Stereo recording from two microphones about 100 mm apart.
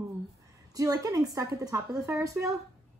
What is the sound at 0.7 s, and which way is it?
A woman's voice, 35° right (ahead or behind).